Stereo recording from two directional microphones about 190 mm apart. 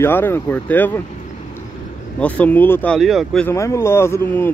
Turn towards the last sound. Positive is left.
turn(degrees=10)  # may be behind; listen again after turning